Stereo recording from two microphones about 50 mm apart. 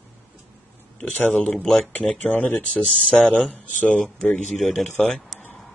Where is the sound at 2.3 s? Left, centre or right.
Left.